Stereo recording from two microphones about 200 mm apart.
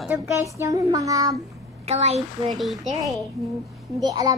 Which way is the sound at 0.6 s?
15° right (ahead or behind).